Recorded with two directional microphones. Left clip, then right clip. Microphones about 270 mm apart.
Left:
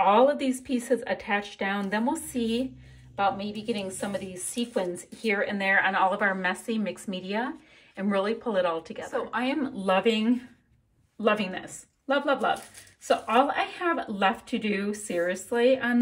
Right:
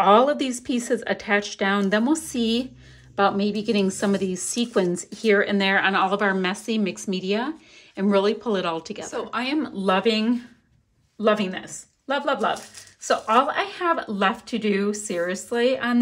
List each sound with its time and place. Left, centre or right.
0.1 s speech: centre
3.3 s a woman's voice: right